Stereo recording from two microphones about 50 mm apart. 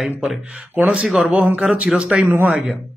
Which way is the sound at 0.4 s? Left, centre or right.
Right.